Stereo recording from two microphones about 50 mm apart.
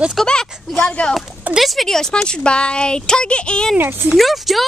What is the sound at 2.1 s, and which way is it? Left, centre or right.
Speech, centre.